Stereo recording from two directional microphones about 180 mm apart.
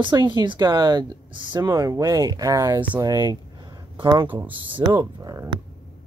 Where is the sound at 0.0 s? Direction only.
25° right (ahead or behind).